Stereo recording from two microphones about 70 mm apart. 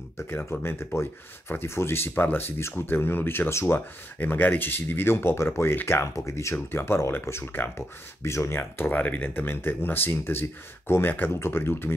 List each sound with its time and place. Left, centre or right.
0.5 s speech: left
8.5 s speech: left